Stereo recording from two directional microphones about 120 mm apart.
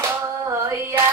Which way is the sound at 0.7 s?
20° right (ahead or behind).